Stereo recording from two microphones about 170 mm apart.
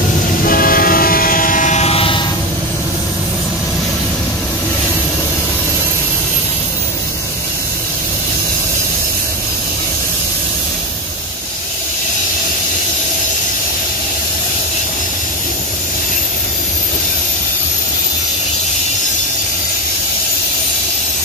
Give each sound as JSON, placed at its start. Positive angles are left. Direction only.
{"t": 0.5, "sound": "train", "side_deg": 60}